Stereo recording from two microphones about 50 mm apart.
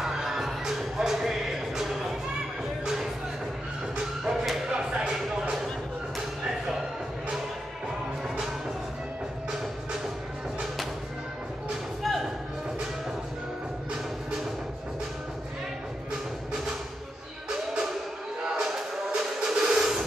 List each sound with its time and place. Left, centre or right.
0.0 s music: centre
3.9 s a sound: centre
17.5 s music: centre